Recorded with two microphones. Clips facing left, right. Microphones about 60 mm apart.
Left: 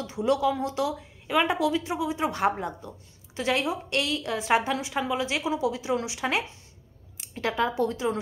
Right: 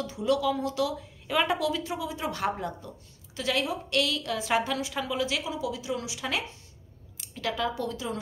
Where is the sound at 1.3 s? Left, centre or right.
Centre.